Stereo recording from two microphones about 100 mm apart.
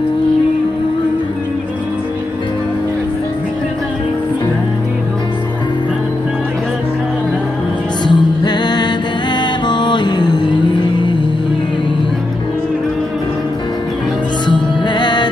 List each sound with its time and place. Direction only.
8.0 s music: 45° left (ahead or behind)
14.5 s music: 50° left (ahead or behind)